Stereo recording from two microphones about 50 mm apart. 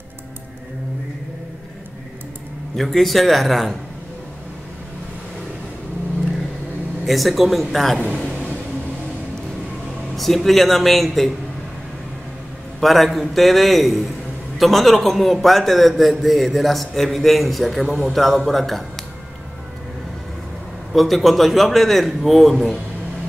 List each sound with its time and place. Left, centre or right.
2.7 s a man's voice: centre
7.1 s a man's voice: centre
8.1 s a sound: centre
10.1 s a man's voice: centre
12.8 s a man's voice: centre
20.9 s a man's voice: centre